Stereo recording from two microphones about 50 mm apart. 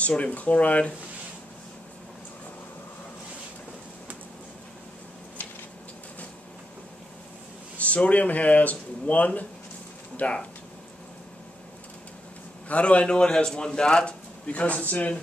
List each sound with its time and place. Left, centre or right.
0.0 s a man's voice: left
7.7 s a man's voice: left
12.6 s a man's voice: left